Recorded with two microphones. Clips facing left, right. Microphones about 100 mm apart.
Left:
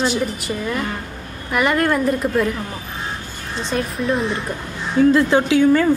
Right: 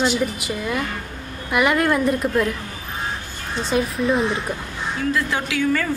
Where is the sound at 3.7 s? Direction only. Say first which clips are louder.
Right 1 dB; centre (ahead or behind).